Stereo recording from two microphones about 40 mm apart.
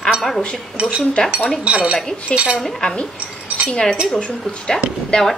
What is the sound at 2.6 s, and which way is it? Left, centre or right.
Speech, centre.